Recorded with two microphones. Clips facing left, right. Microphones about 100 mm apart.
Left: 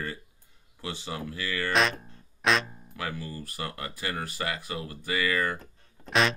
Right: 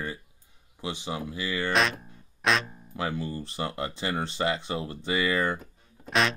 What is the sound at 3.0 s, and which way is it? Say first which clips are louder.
Speech: right 4 dB; 25° right (ahead or behind).